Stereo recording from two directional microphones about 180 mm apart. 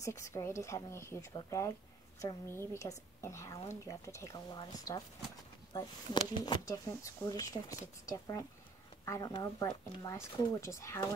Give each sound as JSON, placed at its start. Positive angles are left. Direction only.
{"t": 0.0, "sound": "speech", "side_deg": 15}